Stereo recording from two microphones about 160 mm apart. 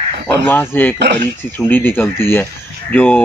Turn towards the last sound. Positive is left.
turn(degrees=10)  # may be behind; listen again after turning